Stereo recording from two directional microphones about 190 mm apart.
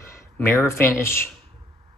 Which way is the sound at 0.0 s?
15° left (ahead or behind).